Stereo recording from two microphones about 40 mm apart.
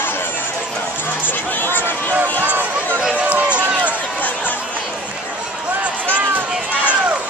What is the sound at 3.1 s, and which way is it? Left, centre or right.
Run, right.